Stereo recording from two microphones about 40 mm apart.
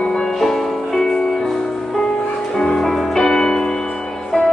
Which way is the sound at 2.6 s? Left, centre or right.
Centre.